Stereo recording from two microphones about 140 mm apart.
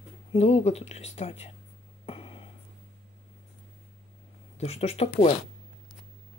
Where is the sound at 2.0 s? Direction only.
40° left (ahead or behind).